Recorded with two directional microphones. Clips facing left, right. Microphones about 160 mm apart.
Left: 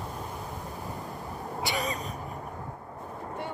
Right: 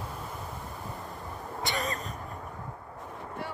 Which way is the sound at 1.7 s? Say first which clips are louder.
Left 1 dB; centre (ahead or behind).